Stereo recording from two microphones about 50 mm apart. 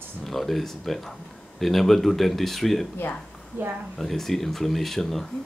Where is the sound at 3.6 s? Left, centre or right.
Right.